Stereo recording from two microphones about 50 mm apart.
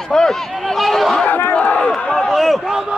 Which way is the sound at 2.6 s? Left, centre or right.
Centre.